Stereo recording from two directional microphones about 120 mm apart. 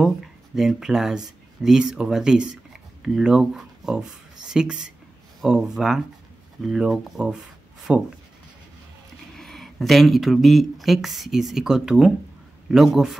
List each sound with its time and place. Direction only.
0.0 s speech: 5° right (ahead or behind)
9.4 s speech: centre (ahead or behind)